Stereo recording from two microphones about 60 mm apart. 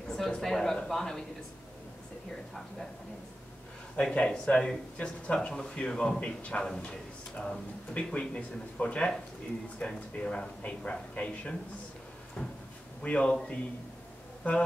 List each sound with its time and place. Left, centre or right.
0.1 s a man's voice: centre
3.9 s speech: centre
12.4 s cupboard open or close: centre
13.0 s speech: centre
14.4 s music: left